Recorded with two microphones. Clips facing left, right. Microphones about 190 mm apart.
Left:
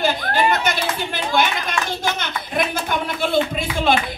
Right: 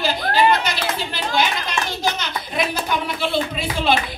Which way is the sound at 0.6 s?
50° left (ahead or behind).